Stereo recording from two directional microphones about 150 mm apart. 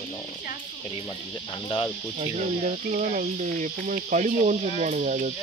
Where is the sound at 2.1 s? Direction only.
50° right (ahead or behind).